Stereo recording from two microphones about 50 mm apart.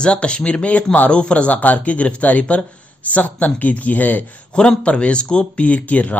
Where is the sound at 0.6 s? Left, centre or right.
Left.